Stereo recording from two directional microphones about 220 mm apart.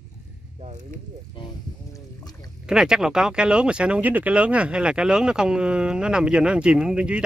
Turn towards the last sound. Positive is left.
turn(degrees=-5)  # may be behind; listen again after turning